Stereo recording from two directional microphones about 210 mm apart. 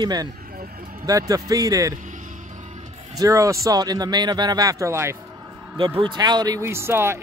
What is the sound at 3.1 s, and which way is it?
Speech, 15° right (ahead or behind).